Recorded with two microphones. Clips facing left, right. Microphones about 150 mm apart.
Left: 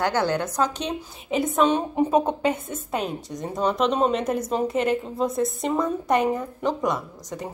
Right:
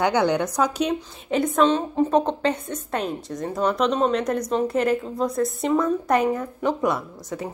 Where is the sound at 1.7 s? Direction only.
15° left (ahead or behind).